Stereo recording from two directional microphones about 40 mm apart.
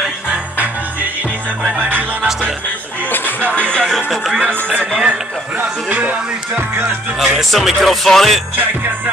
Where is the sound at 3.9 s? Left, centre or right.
Centre.